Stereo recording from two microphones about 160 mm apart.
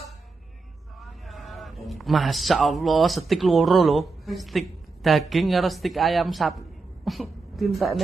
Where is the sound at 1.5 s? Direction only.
Centre (ahead or behind).